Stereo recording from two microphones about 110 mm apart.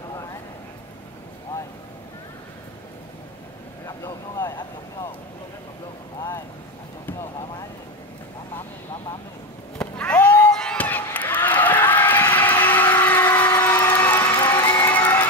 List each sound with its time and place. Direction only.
3.8 s vehicle: 25° left (ahead or behind)
9.8 s a sound: 10° left (ahead or behind)
13.6 s vehicle: 20° left (ahead or behind)
14.3 s music: 45° left (ahead or behind)
14.6 s crowd: 15° left (ahead or behind)